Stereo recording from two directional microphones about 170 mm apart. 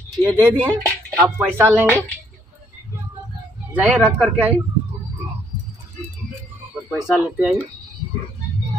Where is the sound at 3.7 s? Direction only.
10° right (ahead or behind).